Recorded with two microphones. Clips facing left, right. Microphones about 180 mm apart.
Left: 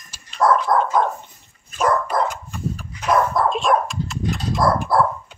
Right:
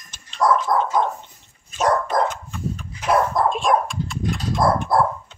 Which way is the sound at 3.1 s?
20° right (ahead or behind).